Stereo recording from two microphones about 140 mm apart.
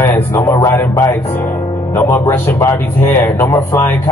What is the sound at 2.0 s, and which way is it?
A man's voice, 15° left (ahead or behind).